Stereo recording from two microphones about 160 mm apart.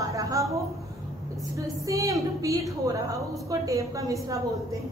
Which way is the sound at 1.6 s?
20° right (ahead or behind).